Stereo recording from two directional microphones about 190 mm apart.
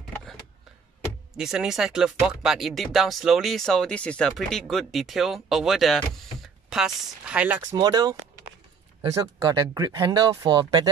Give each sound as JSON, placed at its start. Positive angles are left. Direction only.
{"t": 0.0, "sound": "power windows", "side_deg": 0}
{"t": 1.3, "sound": "speech", "side_deg": -5}
{"t": 7.6, "sound": "speech", "side_deg": -20}